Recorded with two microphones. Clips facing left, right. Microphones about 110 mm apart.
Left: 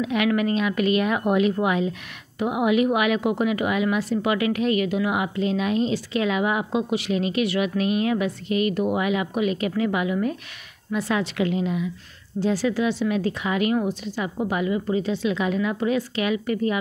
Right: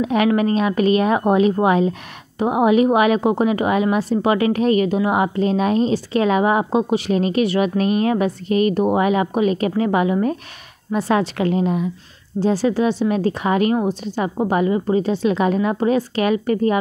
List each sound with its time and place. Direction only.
0.0 s a woman's voice: 35° right (ahead or behind)